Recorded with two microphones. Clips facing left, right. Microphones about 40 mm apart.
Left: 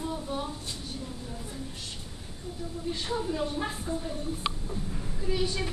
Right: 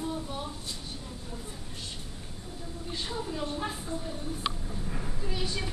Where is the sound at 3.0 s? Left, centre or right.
Centre.